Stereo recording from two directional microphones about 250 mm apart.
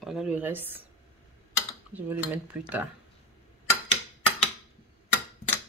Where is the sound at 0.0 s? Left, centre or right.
Centre.